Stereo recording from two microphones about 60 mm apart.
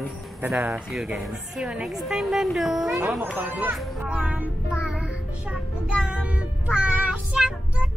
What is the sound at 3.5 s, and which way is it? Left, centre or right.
Speech, right.